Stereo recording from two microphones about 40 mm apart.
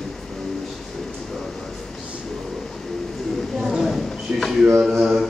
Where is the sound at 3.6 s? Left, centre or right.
Centre.